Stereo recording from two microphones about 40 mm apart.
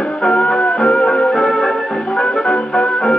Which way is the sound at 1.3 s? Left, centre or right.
Centre.